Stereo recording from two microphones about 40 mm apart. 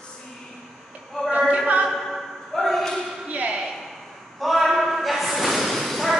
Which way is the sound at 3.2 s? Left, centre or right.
Right.